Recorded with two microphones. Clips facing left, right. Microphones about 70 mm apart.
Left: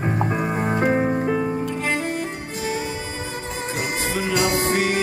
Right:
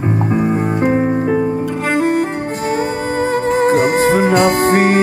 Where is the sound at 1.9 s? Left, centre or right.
Right.